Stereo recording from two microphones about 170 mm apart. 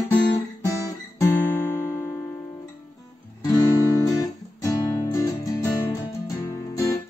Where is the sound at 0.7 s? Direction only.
15° left (ahead or behind).